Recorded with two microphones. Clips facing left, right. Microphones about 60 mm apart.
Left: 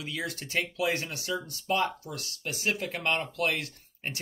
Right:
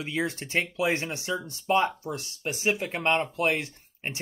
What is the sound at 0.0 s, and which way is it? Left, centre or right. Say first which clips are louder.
Speech: right 5 dB; right.